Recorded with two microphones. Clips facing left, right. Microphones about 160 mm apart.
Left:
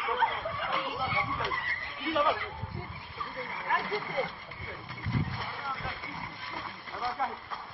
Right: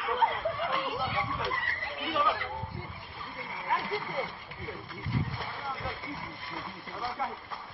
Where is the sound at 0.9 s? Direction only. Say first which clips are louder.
Right 1 dB; centre (ahead or behind).